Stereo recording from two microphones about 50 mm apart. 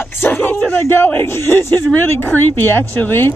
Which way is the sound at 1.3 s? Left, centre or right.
Left.